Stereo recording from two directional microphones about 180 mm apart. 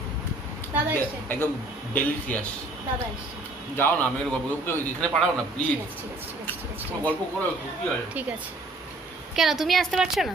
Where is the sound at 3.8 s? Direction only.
10° left (ahead or behind).